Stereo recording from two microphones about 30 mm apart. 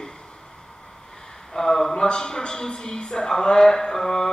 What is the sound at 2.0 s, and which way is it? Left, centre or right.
Speech, left.